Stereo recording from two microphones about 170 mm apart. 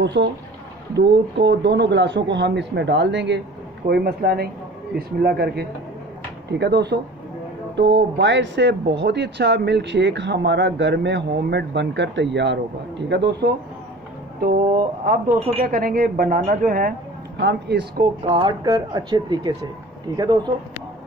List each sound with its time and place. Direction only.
0.0 s speech: 90° right
3.9 s speech: 70° right (ahead or behind)
6.6 s speech: 80° right
13.1 s speech: 80° right
15.0 s speech: 55° right (ahead or behind)
17.4 s speech: 80° right
18.3 s speech: 25° right (ahead or behind)